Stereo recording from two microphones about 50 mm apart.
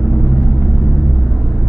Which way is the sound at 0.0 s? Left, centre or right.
Centre.